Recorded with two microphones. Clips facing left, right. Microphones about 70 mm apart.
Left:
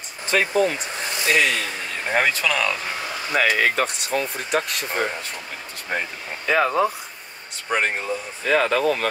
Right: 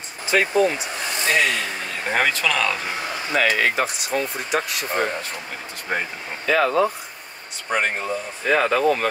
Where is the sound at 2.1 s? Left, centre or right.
Centre.